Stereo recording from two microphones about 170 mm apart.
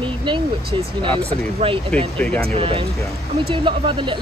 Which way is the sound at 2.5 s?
30° right (ahead or behind).